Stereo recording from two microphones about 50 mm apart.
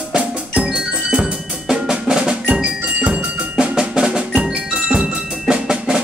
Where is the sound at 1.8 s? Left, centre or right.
Centre.